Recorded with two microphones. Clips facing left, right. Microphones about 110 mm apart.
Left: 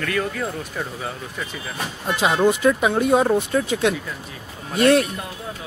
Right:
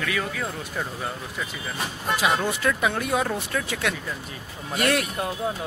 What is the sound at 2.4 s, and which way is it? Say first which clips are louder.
Speech: left 7 dB; 20° left (ahead or behind).